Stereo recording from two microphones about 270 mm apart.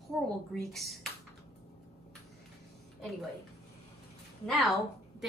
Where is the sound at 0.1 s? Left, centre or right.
Centre.